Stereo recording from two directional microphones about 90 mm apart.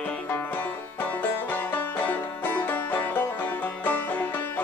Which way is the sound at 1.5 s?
20° left (ahead or behind).